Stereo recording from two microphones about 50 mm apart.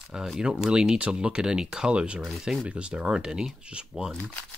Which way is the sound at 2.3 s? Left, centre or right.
Centre.